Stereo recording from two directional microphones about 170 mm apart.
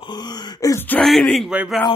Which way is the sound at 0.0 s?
25° left (ahead or behind).